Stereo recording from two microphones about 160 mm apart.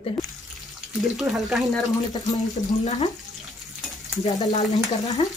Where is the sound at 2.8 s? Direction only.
50° left (ahead or behind).